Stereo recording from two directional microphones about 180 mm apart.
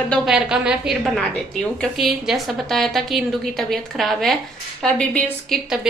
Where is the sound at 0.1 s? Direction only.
5° right (ahead or behind).